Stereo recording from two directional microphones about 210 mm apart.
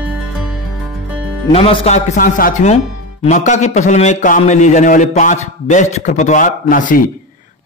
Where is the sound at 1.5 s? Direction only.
25° left (ahead or behind).